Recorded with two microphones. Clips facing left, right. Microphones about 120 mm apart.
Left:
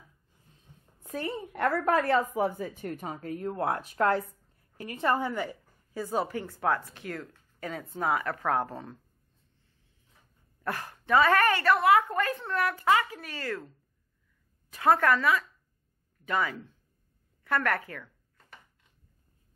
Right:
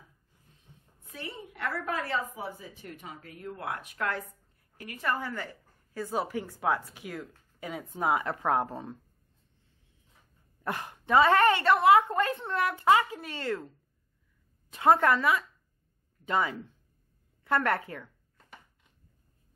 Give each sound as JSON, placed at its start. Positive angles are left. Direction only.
{"t": 1.0, "sound": "a woman's voice", "side_deg": 45}
{"t": 5.3, "sound": "a sound", "side_deg": 15}
{"t": 6.0, "sound": "speech", "side_deg": -5}
{"t": 10.6, "sound": "a woman's voice", "side_deg": -20}
{"t": 14.7, "sound": "a woman's voice", "side_deg": -20}